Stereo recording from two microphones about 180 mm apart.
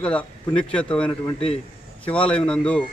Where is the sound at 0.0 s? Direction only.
5° left (ahead or behind).